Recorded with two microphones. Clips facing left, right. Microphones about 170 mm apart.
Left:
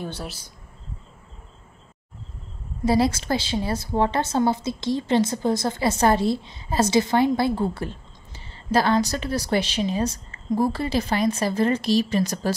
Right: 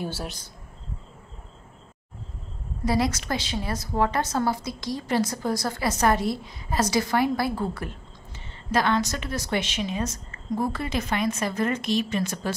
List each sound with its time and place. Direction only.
0.0 s speech: 5° right (ahead or behind)
2.8 s a woman's voice: 30° left (ahead or behind)